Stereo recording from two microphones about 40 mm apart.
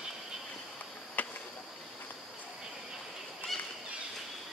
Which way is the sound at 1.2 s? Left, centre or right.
Left.